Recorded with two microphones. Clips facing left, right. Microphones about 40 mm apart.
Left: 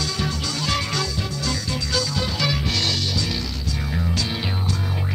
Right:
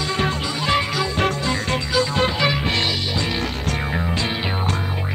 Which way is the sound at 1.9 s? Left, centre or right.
Right.